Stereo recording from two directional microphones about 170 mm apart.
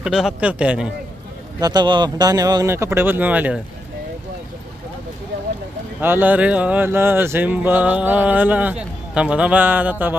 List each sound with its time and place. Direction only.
0.0 s a man's voice: 5° right (ahead or behind)
1.6 s speech: 25° right (ahead or behind); by 3.5 s 10° right (ahead or behind)
5.9 s speech: 10° right (ahead or behind)